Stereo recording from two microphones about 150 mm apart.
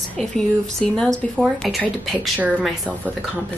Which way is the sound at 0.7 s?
5° left (ahead or behind).